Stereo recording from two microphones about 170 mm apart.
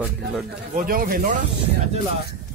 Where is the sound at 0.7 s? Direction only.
55° right (ahead or behind).